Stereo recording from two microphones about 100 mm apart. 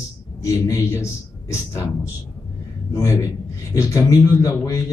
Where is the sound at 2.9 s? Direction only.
30° left (ahead or behind).